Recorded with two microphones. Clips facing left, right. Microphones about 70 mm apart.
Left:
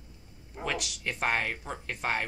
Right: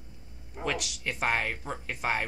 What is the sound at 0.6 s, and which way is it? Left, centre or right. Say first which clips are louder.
Speech: right 1 dB; centre.